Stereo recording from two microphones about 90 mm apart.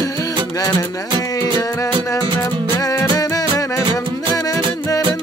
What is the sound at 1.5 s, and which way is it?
Music, 40° left (ahead or behind).